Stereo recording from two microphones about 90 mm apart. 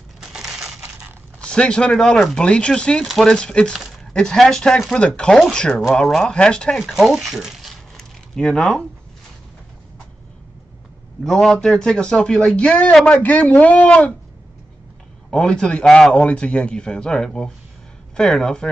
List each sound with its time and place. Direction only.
0.2 s crushing: 5° right (ahead or behind)
1.4 s a man's voice: 10° left (ahead or behind)
6.8 s speech: centre (ahead or behind)
11.2 s a man's voice: 5° left (ahead or behind)
15.3 s a man's voice: 10° left (ahead or behind)